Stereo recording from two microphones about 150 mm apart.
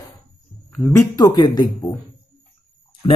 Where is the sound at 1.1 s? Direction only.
30° left (ahead or behind).